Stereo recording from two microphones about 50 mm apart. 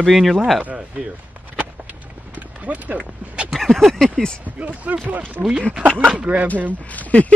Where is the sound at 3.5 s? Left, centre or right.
Centre.